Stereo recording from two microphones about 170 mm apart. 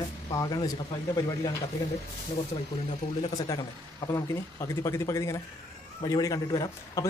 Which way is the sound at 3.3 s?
25° left (ahead or behind).